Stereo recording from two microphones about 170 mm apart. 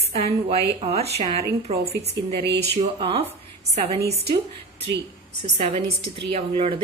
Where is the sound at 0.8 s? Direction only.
35° right (ahead or behind).